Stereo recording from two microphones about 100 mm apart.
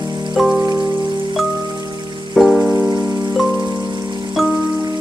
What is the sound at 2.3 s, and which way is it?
Rain on surface, centre (ahead or behind).